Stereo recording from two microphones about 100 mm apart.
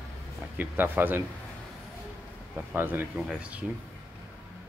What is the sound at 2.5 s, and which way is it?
Speech, 20° right (ahead or behind).